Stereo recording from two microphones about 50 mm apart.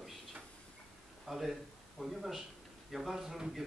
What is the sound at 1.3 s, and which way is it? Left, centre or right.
Speech, centre.